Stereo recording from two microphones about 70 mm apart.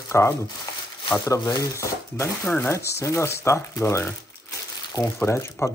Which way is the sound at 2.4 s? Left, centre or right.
Left.